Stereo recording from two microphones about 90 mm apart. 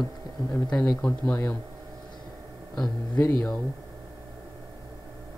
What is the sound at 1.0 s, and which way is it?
Speech, 20° left (ahead or behind).